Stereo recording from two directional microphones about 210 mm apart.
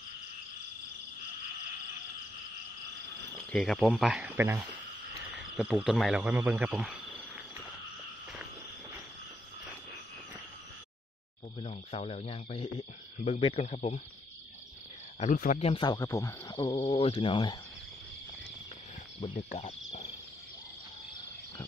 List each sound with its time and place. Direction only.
3.3 s speech: centre (ahead or behind)
5.1 s cricket: 15° right (ahead or behind)
5.4 s speech: 5° right (ahead or behind)
11.6 s speech: 30° left (ahead or behind)
15.1 s speech: 35° left (ahead or behind)
19.1 s speech: 25° left (ahead or behind)